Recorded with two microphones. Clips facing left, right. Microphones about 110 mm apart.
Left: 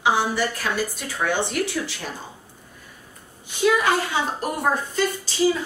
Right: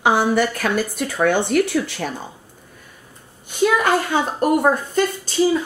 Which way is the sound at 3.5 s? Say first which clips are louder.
Right 3 dB; 55° right (ahead or behind).